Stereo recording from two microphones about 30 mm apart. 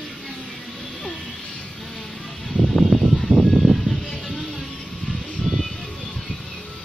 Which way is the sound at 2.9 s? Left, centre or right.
Centre.